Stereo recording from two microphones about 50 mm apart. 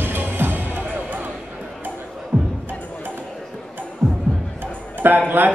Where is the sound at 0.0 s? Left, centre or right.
Right.